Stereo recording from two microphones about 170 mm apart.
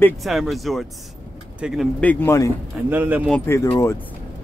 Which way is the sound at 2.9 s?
10° right (ahead or behind).